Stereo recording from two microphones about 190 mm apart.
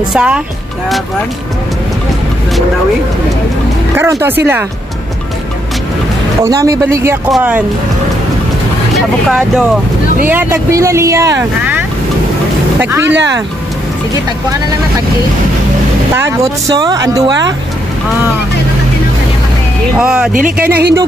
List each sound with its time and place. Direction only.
0.1 s speech: 5° right (ahead or behind)
3.9 s speech: 10° right (ahead or behind)
6.4 s speech: 15° right (ahead or behind)
8.9 s speech: centre (ahead or behind)
12.8 s speech: 15° right (ahead or behind)
16.7 s speech: 20° right (ahead or behind)
20.0 s speech: 5° right (ahead or behind)
20.3 s speech: 50° right (ahead or behind)